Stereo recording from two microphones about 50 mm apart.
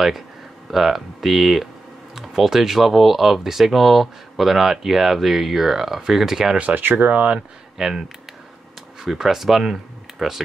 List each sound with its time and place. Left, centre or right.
0.7 s speech: centre
6.8 s speech: right
7.3 s speech: centre
9.0 s speech: centre